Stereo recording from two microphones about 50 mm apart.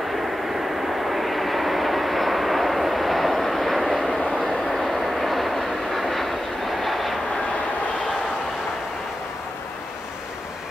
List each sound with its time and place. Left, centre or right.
0.8 s vehicle: centre